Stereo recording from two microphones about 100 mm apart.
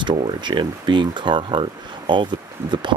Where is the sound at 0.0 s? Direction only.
50° right (ahead or behind).